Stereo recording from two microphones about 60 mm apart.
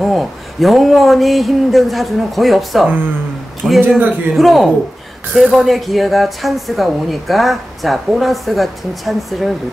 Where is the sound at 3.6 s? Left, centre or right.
Centre.